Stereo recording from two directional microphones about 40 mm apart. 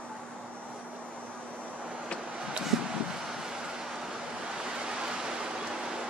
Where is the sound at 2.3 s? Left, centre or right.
Right.